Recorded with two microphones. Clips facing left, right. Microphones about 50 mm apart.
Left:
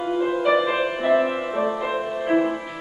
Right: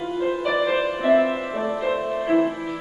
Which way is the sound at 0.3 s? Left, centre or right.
Centre.